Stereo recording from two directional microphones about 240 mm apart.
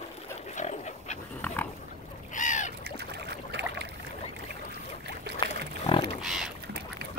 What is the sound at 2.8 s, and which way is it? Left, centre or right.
Boat, right.